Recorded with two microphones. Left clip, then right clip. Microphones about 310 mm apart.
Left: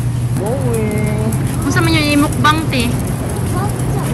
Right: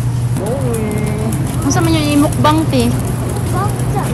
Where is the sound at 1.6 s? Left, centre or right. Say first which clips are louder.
Even; centre.